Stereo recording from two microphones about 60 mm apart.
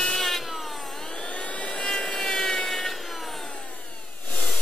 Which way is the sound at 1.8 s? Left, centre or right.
Centre.